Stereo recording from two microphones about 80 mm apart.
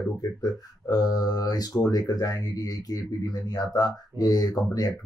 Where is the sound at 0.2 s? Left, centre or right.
Left.